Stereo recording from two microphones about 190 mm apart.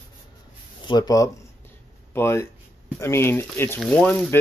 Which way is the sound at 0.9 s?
20° left (ahead or behind).